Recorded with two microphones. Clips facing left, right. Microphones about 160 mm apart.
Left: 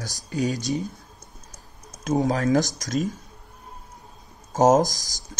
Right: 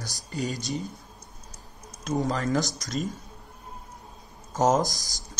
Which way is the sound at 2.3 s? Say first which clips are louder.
Left 5 dB; 45° left (ahead or behind).